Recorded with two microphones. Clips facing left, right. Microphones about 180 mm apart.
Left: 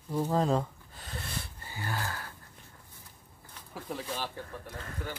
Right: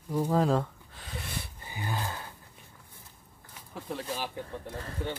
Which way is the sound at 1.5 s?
15° right (ahead or behind).